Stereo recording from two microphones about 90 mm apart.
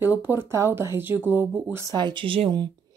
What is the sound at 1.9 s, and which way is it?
Speech, 55° right (ahead or behind).